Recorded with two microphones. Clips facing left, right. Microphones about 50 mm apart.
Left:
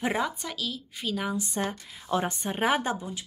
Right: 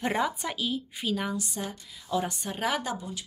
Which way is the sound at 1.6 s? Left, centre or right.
Left.